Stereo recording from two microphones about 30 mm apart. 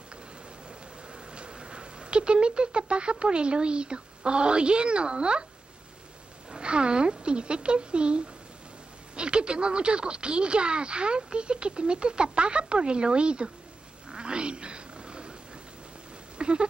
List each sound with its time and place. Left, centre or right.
1.1 s speech: right
6.5 s speech: right
14.0 s wild animals: right
16.3 s a sound: right